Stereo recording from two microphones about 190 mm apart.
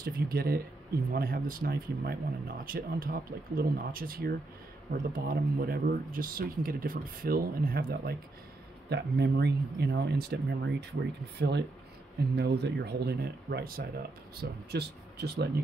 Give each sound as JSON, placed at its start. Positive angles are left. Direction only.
{"t": 0.0, "sound": "speech", "side_deg": -55}